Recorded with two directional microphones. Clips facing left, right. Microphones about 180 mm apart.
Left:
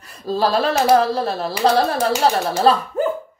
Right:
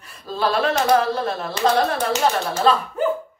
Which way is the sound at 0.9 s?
35° left (ahead or behind).